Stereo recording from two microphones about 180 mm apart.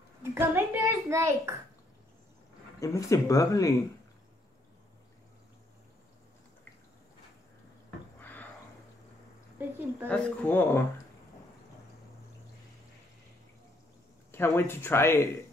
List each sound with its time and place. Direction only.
0.2 s a child's voice: 15° right (ahead or behind)
2.8 s speech: 15° left (ahead or behind)
10.0 s speech: 5° left (ahead or behind)
14.3 s speech: 15° left (ahead or behind)